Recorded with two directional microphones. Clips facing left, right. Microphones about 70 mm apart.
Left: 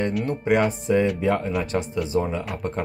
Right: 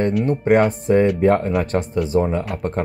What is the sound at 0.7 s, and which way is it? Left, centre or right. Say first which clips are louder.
Speech: right 5 dB; right.